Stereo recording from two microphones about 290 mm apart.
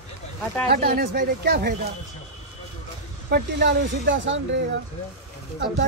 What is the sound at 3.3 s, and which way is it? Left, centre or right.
Speech, right.